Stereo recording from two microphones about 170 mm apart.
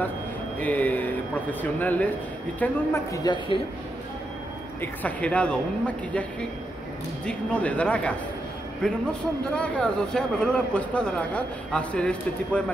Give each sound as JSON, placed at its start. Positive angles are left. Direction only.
{"t": 0.6, "sound": "a man's voice", "side_deg": 10}
{"t": 5.0, "sound": "a man's voice", "side_deg": 5}
{"t": 7.2, "sound": "a man's voice", "side_deg": 5}